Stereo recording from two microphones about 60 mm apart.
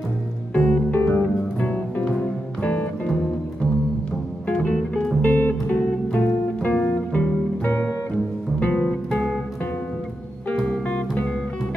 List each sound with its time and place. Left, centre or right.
0.6 s music: left
4.5 s music: left
5.2 s music: left
10.6 s music: left